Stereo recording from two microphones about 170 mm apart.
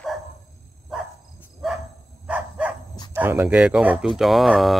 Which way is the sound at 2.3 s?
10° right (ahead or behind).